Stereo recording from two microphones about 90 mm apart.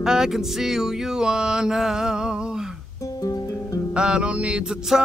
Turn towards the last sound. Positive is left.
turn(degrees=-10)  # may be behind; listen again after turning